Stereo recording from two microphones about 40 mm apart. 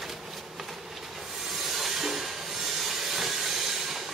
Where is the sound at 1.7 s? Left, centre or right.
Centre.